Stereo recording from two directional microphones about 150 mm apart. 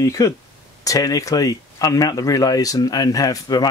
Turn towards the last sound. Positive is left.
turn(degrees=25)  # may be behind; listen again after turning